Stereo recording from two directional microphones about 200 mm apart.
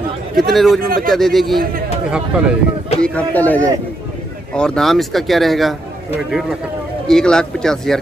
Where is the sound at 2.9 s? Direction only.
5° left (ahead or behind).